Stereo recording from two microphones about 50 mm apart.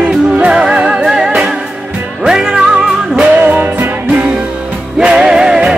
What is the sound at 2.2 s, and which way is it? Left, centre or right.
Music, centre.